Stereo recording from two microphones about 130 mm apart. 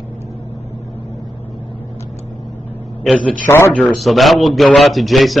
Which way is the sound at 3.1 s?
Centre (ahead or behind).